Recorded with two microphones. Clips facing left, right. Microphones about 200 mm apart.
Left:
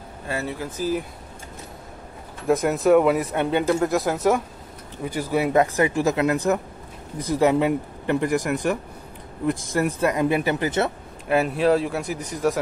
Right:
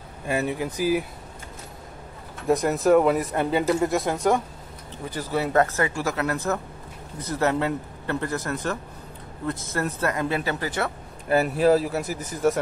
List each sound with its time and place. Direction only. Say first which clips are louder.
0.3 s speech: right 3 dB; 15° right (ahead or behind)
2.4 s speech: left 1 dB; centre (ahead or behind); by 10.9 s 20° left (ahead or behind)
11.2 s speech: even; centre (ahead or behind)